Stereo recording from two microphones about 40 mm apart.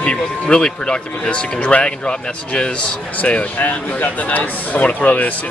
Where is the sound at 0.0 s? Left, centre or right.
Left.